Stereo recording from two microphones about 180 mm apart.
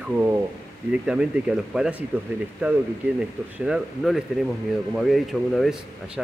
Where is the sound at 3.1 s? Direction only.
5° right (ahead or behind).